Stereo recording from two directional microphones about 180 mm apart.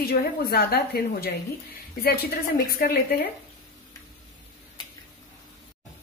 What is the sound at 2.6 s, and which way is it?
Speech, 55° left (ahead or behind).